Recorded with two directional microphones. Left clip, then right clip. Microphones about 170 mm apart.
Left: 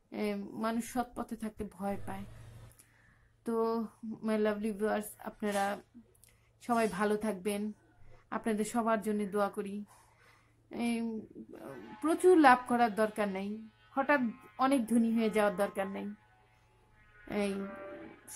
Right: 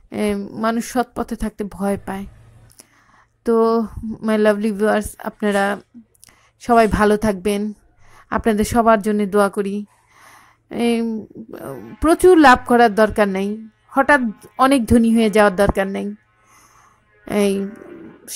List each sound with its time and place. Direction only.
0.1 s speech: 35° right (ahead or behind)
3.4 s a woman's voice: 35° right (ahead or behind)
17.3 s speech: 40° right (ahead or behind)